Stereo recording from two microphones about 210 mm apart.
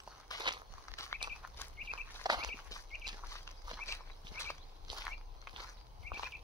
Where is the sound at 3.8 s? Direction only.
15° left (ahead or behind).